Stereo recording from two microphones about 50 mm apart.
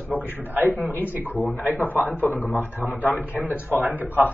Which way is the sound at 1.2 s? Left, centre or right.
Left.